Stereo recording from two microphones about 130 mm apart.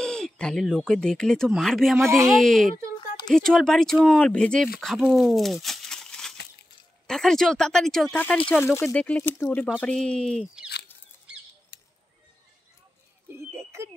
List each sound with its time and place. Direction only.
0.0 s speech: 5° left (ahead or behind)
2.0 s a woman's voice: 20° right (ahead or behind)
2.3 s speech: 5° left (ahead or behind)
8.5 s speech: 15° left (ahead or behind)
10.4 s speech: 5° right (ahead or behind)
13.3 s a sound: 20° right (ahead or behind)